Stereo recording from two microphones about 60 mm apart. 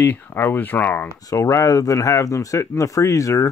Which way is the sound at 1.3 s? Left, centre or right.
Left.